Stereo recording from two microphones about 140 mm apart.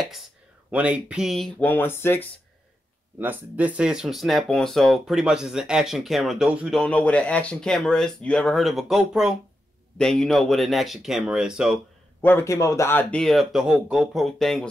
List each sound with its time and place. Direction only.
0.7 s speech: 10° right (ahead or behind)
1.6 s speech: 15° left (ahead or behind)
3.2 s speech: 10° right (ahead or behind)
6.8 s speech: 10° left (ahead or behind)
12.2 s speech: 15° left (ahead or behind)
13.2 s speech: centre (ahead or behind)